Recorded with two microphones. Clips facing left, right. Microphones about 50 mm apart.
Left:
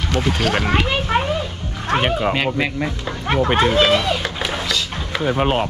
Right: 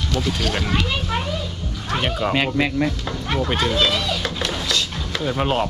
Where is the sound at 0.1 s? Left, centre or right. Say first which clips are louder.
Left 4 dB; left.